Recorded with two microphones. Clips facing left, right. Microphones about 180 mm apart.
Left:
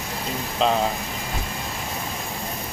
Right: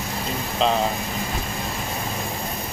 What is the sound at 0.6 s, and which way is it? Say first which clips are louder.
Speech: even; 5° left (ahead or behind).